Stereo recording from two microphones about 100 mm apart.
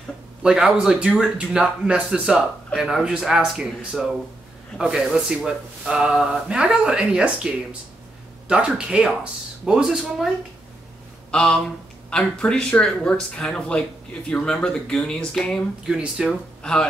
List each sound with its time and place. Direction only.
0.4 s speech: 5° right (ahead or behind)
12.1 s speech: 10° left (ahead or behind)
15.9 s speech: 5° right (ahead or behind)